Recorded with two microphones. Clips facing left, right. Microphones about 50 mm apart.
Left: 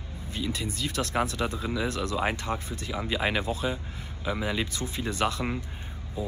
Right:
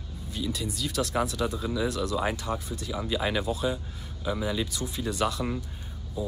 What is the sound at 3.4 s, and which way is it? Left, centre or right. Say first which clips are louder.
Speech: right 1 dB; left.